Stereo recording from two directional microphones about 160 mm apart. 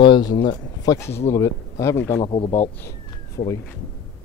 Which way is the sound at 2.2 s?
30° left (ahead or behind).